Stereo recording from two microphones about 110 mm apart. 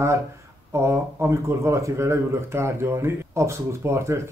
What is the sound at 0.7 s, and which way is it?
Speech, 25° right (ahead or behind).